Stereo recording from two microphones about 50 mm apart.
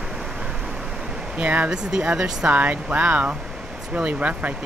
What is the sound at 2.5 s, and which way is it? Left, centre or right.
Speech, right.